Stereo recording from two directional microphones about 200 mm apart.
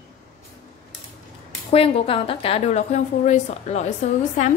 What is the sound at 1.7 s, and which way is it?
A woman's voice, 30° left (ahead or behind).